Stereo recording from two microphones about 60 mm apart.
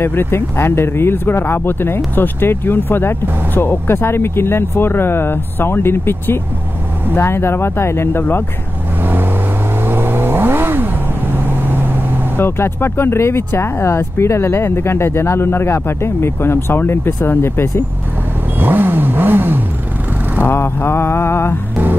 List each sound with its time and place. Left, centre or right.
0.0 s speech: left
9.8 s vehicle: right
12.4 s speech: left
18.6 s vehicle: right
20.4 s speech: left